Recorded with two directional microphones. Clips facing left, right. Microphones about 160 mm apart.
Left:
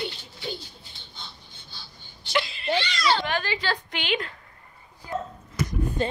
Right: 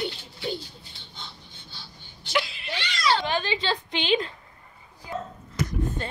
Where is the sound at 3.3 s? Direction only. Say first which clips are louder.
Right 1 dB; 25° right (ahead or behind).